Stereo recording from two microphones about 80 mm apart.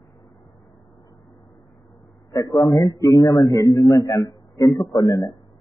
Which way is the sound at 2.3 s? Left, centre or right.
Left.